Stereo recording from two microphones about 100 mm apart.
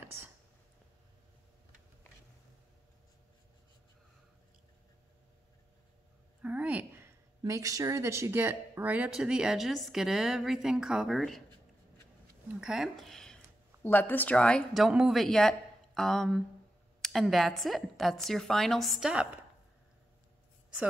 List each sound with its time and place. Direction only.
6.4 s a sound: 15° right (ahead or behind)
7.1 s a woman's voice: 30° right (ahead or behind); by 11.4 s centre (ahead or behind)
12.5 s a woman's voice: 5° right (ahead or behind)
13.8 s speech: 20° left (ahead or behind)
14.7 s a woman's voice: 5° right (ahead or behind)